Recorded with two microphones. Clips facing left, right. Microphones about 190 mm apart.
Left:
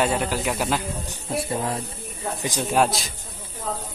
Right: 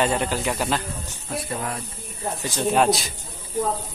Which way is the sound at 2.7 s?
Centre (ahead or behind).